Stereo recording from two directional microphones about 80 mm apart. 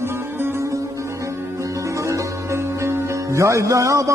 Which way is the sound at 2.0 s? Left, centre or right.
Right.